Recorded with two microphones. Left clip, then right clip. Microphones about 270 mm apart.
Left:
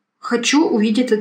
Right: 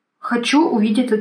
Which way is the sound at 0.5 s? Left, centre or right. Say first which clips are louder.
Right 1 dB; centre.